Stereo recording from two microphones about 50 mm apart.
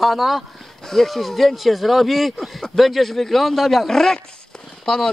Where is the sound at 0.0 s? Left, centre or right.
Centre.